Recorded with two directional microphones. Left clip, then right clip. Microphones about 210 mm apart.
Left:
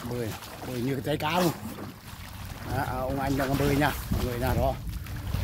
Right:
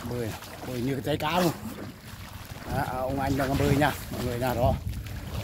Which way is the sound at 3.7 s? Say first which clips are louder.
Right 2 dB; 5° right (ahead or behind).